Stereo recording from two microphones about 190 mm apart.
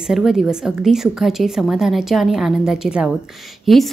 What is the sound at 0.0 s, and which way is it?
Speech, centre (ahead or behind).